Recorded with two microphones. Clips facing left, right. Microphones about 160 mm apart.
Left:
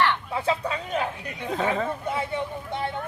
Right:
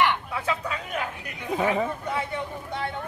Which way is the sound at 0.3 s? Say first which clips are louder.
Left 3 dB; 30° left (ahead or behind).